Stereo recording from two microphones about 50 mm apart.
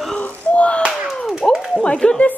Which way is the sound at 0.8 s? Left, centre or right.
Centre.